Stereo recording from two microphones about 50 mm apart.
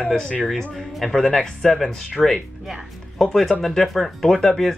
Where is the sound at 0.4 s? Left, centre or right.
Centre.